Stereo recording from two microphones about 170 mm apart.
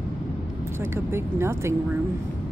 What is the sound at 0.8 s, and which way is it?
Speech, 15° right (ahead or behind).